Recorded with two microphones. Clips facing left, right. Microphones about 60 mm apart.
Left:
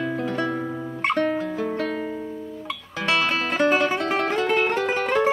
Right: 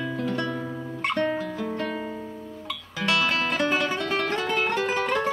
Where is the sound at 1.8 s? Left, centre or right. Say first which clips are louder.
Left 3 dB; centre.